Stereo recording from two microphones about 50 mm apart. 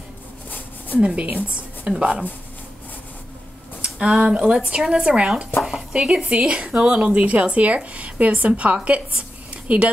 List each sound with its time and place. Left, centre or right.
0.9 s speech: right
4.0 s speech: centre